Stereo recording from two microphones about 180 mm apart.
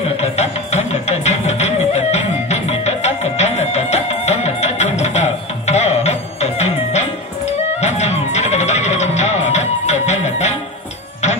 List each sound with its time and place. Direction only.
0.2 s music: 40° left (ahead or behind)